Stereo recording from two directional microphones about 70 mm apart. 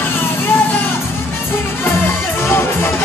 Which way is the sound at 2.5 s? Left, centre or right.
Left.